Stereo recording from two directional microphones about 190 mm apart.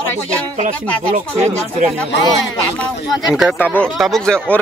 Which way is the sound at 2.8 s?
Centre (ahead or behind).